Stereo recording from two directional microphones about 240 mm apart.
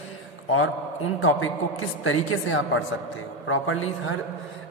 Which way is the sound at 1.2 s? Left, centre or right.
Left.